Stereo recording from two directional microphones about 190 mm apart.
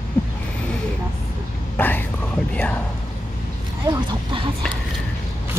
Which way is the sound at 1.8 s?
10° left (ahead or behind).